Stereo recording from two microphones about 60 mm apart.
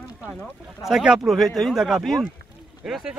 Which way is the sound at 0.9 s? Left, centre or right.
Centre.